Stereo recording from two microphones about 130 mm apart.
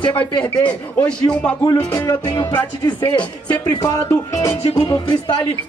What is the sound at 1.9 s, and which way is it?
Speech, 30° left (ahead or behind).